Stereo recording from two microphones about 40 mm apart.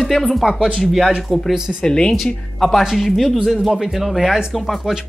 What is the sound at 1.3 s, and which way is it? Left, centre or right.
Speech, centre.